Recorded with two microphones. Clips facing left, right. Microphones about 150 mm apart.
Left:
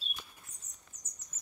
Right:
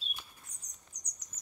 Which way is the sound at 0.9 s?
25° left (ahead or behind).